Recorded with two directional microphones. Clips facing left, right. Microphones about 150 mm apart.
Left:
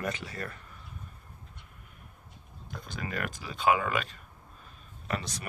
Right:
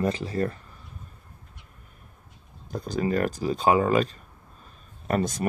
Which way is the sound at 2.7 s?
35° right (ahead or behind).